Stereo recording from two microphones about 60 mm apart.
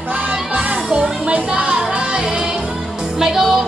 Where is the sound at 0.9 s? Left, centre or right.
Centre.